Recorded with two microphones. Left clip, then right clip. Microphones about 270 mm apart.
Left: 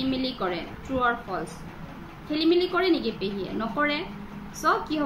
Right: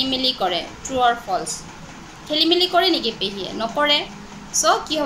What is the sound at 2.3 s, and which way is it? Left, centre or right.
A woman's voice, right.